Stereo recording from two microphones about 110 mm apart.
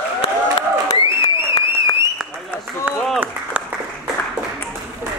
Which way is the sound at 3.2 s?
15° right (ahead or behind).